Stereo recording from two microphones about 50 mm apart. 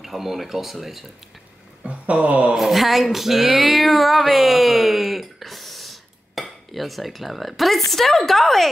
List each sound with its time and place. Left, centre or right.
0.0 s speech: centre
1.8 s a sound: right
2.5 s speech: centre